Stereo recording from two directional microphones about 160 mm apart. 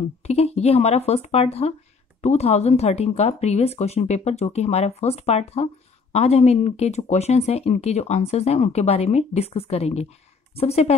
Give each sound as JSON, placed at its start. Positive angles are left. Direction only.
{"t": 0.2, "sound": "speech", "side_deg": 40}